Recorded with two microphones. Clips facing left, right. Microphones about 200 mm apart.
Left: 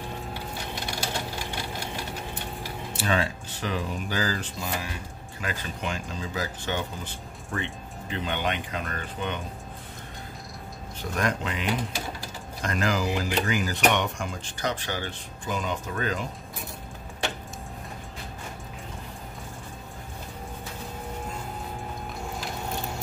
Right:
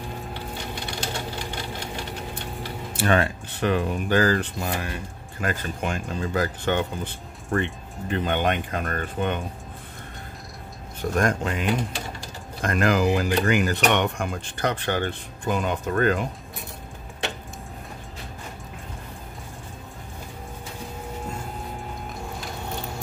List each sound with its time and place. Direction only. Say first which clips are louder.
3.0 s speech: right 5 dB; 60° right (ahead or behind)
11.0 s speech: right 5 dB; 50° right (ahead or behind)
12.6 s speech: right 6 dB; 55° right (ahead or behind)